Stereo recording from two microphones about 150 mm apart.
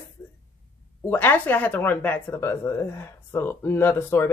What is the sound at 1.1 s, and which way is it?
Speech, 10° left (ahead or behind).